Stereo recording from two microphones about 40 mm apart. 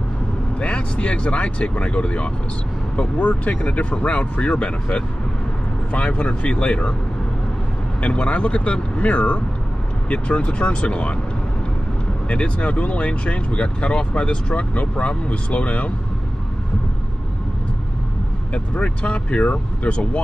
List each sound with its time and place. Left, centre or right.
0.6 s speech: left
8.0 s speech: left
12.3 s speech: left
18.5 s speech: left